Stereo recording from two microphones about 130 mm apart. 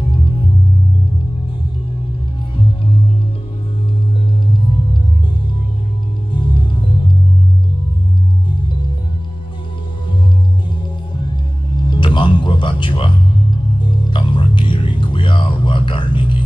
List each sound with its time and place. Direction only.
6.3 s music: 40° left (ahead or behind)
11.7 s music: 40° left (ahead or behind)